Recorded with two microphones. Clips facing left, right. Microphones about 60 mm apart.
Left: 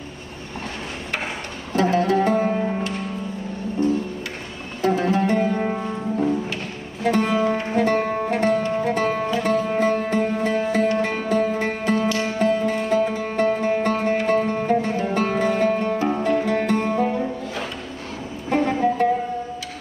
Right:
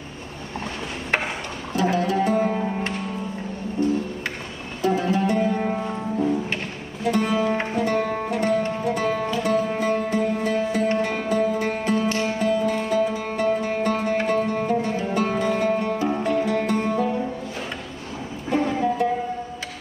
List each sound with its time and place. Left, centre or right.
1.8 s music: left
3.8 s music: left
7.0 s music: left
12.1 s music: right
12.4 s music: left
18.5 s music: left